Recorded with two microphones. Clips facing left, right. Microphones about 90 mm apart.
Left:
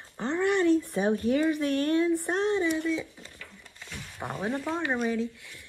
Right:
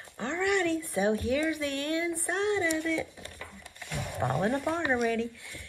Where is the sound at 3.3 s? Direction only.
15° right (ahead or behind).